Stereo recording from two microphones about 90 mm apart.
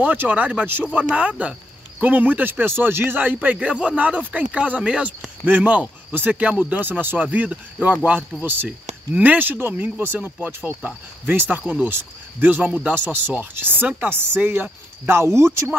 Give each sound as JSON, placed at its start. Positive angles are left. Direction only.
{"t": 0.0, "sound": "speech", "side_deg": -20}